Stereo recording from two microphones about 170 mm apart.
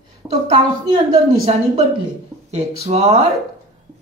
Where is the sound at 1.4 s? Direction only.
40° right (ahead or behind).